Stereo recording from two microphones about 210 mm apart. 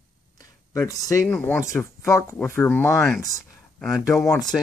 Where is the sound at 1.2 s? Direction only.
10° left (ahead or behind).